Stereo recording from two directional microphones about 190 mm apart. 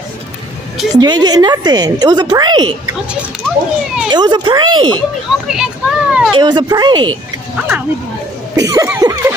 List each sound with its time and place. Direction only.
0.9 s a woman's voice: 20° right (ahead or behind)
3.4 s a child's voice: centre (ahead or behind)
4.1 s a woman's voice: 25° right (ahead or behind)
5.5 s a child's voice: 5° right (ahead or behind)
6.3 s a woman's voice: 20° right (ahead or behind)
8.5 s cough: 15° right (ahead or behind)